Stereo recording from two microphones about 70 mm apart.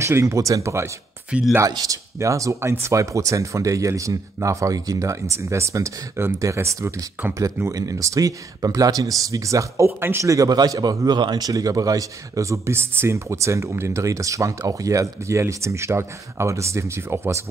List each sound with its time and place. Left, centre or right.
0.0 s speech: right
1.3 s speech: centre
1.9 s speech: right
7.7 s speech: right
9.8 s speech: right
10.2 s speech: right
11.5 s speech: right